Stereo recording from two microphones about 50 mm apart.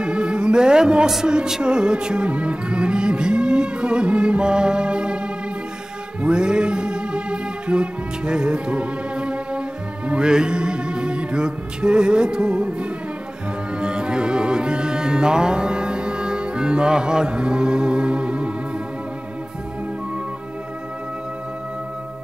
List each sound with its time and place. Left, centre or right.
0.0 s music: centre
13.7 s music: centre